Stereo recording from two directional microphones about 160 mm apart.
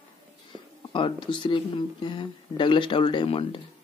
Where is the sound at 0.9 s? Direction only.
30° left (ahead or behind).